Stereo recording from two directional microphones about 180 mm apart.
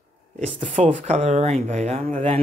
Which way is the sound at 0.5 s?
30° right (ahead or behind).